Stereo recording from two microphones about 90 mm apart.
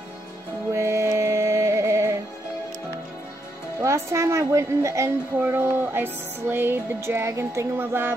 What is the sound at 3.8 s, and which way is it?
A woman's voice, 35° right (ahead or behind).